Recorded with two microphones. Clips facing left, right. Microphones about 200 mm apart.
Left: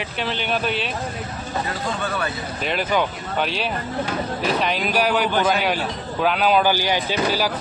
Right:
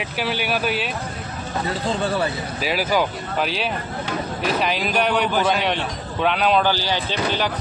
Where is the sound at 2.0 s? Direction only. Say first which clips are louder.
Right 5 dB; 30° right (ahead or behind).